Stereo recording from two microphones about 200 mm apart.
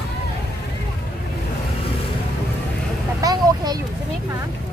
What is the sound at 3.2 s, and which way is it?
Vehicle, 20° right (ahead or behind).